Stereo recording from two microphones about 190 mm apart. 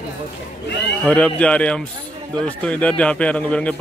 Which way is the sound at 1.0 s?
5° left (ahead or behind).